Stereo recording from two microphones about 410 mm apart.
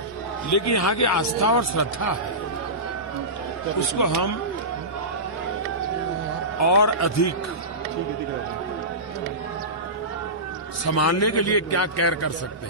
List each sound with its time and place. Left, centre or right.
0.5 s a man's voice: left
4.0 s speech: left
6.6 s a man's voice: left
10.9 s a man's voice: left